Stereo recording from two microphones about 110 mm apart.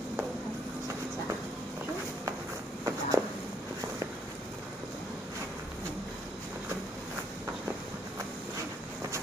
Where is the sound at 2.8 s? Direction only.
25° right (ahead or behind).